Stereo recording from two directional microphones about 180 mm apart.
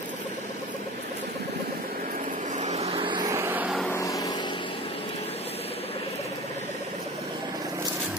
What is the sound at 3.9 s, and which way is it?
Vehicle, 20° left (ahead or behind).